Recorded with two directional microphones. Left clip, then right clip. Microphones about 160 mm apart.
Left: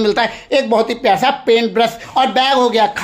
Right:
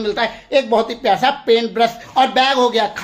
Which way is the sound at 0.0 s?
35° left (ahead or behind).